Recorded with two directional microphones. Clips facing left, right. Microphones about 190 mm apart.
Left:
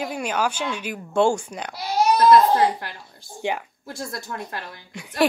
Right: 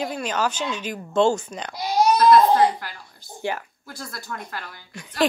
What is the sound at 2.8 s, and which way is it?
A woman's voice, 25° left (ahead or behind).